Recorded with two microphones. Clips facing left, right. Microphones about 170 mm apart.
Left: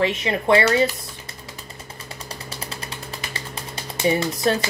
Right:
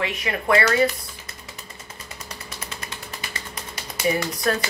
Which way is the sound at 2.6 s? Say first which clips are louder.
Left 2 dB; 30° left (ahead or behind).